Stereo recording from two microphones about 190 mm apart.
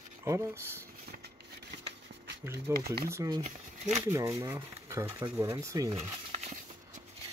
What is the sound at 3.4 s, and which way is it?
Speech, 40° right (ahead or behind).